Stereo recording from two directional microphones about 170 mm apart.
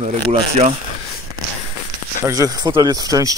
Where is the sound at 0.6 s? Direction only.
40° right (ahead or behind).